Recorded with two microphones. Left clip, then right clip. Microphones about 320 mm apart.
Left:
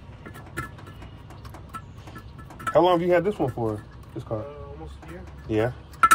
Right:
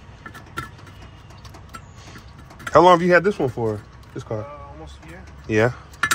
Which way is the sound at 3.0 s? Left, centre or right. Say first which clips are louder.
Right 5 dB; centre.